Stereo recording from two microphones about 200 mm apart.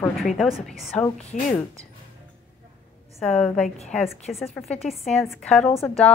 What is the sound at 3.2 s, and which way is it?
Speech, 5° left (ahead or behind).